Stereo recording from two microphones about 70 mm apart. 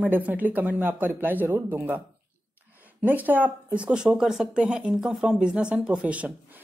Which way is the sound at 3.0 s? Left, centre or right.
Right.